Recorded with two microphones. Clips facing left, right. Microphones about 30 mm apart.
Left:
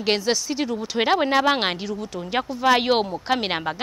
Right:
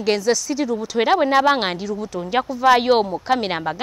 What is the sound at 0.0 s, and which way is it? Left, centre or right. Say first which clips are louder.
Speech: right 3 dB; left.